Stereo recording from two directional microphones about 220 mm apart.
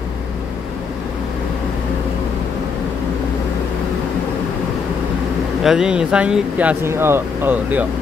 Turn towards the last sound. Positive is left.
turn(degrees=-10)  # may be behind; listen again after turning